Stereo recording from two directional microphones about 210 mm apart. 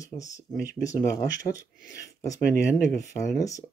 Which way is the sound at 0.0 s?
15° left (ahead or behind).